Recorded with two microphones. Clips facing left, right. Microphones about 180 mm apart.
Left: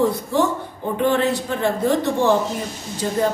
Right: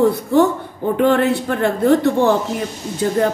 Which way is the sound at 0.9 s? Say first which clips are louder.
Right 4 dB; 60° right (ahead or behind).